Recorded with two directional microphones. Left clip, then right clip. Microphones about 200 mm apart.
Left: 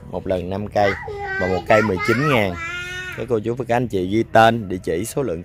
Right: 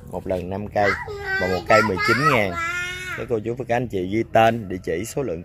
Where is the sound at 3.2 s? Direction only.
20° left (ahead or behind).